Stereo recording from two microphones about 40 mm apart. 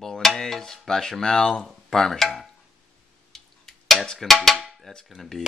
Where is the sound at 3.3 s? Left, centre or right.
Centre.